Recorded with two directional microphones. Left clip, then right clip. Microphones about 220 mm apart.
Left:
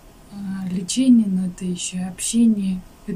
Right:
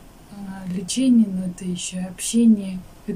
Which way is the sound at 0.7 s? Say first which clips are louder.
Left 2 dB; centre (ahead or behind).